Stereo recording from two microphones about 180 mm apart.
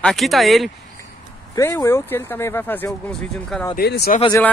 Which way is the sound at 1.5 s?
15° left (ahead or behind).